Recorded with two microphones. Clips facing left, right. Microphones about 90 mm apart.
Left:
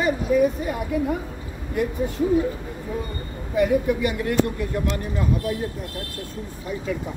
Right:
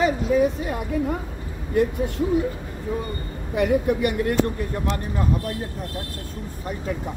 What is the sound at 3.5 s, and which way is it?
Speech, 65° right (ahead or behind).